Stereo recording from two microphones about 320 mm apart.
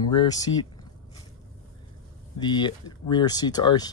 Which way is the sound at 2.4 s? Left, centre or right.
Centre.